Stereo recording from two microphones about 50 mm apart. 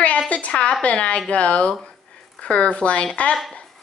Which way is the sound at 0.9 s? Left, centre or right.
Left.